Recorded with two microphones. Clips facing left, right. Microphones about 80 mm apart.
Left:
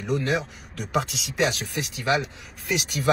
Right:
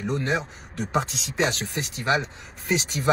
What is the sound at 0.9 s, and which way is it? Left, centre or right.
Speech, centre.